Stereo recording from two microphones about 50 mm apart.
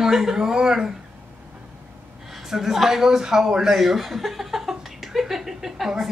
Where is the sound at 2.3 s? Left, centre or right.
Centre.